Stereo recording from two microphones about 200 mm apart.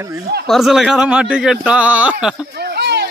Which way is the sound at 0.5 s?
Centre (ahead or behind).